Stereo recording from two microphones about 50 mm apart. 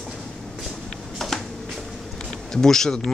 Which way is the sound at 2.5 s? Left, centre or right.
Centre.